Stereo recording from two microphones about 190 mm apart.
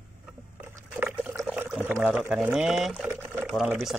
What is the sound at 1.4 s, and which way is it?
Speech, 5° right (ahead or behind).